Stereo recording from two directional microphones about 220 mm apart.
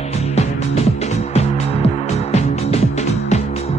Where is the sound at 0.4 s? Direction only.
30° left (ahead or behind).